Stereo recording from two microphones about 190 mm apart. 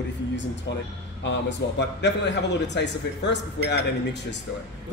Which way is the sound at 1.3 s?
65° left (ahead or behind).